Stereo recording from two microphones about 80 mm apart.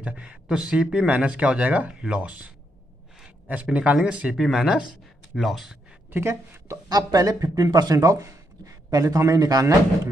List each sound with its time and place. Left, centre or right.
0.0 s speech: centre
3.2 s a sound: centre
3.7 s speech: centre
6.0 s speech: right
6.9 s speech: right